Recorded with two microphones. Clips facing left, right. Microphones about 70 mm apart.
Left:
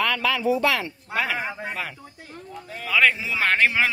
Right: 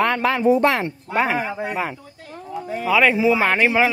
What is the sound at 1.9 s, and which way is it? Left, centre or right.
Speech, centre.